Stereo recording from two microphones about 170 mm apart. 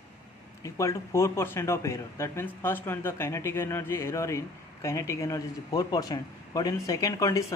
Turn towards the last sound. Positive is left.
turn(degrees=20)  # may be behind; listen again after turning